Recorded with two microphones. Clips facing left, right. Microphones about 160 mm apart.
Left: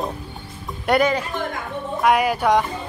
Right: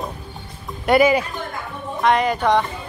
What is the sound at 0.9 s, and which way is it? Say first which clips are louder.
Speech: right 3 dB; 5° right (ahead or behind).